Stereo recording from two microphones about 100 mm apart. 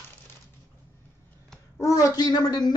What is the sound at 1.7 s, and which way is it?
Speech, 35° left (ahead or behind).